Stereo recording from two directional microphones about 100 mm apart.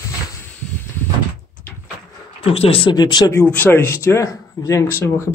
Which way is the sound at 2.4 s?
80° left.